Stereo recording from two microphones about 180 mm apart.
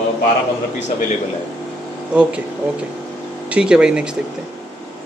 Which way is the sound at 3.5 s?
5° right (ahead or behind).